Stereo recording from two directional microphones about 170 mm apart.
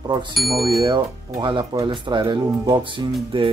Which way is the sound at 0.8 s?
25° right (ahead or behind).